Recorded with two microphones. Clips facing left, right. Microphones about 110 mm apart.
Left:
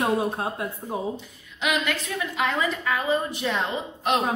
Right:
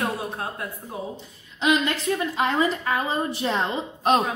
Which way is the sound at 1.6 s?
30° right (ahead or behind).